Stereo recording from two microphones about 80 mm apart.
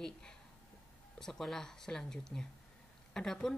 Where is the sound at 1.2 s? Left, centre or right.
Centre.